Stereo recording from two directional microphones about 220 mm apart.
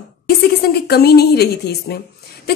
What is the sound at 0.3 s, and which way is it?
A woman's voice, 45° left (ahead or behind).